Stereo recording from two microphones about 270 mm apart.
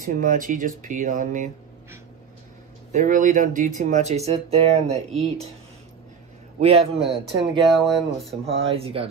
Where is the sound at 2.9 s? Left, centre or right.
Right.